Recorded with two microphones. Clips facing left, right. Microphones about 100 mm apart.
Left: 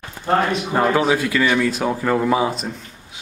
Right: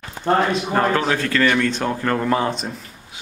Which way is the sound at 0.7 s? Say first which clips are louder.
Left 3 dB; 10° left (ahead or behind).